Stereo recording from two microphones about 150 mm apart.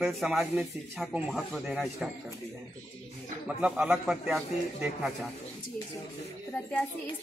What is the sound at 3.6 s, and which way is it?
A man's voice, 5° right (ahead or behind).